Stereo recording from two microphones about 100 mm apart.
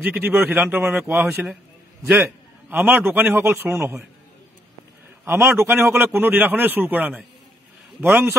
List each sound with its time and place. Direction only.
0.0 s a man's voice: 15° right (ahead or behind)
1.1 s a man's voice: 5° right (ahead or behind)
2.0 s a man's voice: 20° right (ahead or behind)
5.2 s a man's voice: 25° right (ahead or behind)